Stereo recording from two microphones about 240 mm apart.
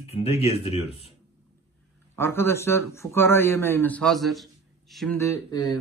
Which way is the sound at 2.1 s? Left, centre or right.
Centre.